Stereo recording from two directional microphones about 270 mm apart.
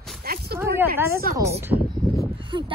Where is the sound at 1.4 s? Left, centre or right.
Centre.